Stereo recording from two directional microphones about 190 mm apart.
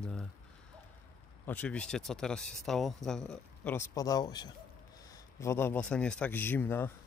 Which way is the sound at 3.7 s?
20° left (ahead or behind).